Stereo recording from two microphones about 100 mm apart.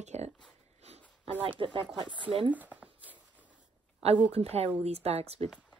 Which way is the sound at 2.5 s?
15° right (ahead or behind).